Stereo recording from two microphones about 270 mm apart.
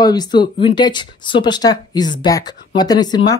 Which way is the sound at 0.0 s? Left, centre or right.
Centre.